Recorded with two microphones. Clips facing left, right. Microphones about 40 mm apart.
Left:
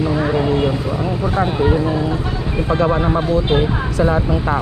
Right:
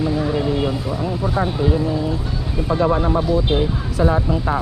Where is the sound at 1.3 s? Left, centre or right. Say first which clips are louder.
Left 4 dB; left.